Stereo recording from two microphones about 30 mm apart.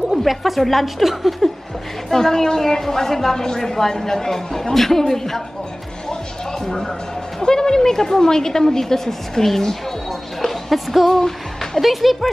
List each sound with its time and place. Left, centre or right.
0.2 s a woman's voice: centre
2.0 s a woman's voice: centre
6.6 s a woman's voice: centre
10.4 s music: centre
11.8 s a woman's voice: centre